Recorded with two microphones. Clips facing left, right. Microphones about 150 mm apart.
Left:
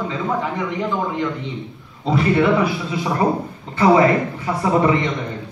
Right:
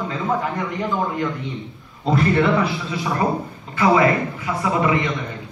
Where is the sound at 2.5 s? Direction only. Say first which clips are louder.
Left 2 dB; 15° left (ahead or behind).